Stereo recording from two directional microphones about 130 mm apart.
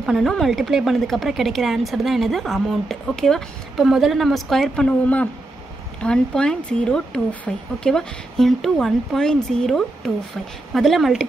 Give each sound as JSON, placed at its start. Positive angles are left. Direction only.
{"t": 0.0, "sound": "speech", "side_deg": 5}